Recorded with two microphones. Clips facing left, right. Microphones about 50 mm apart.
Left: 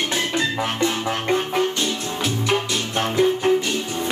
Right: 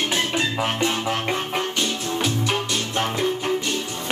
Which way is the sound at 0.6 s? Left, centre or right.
Centre.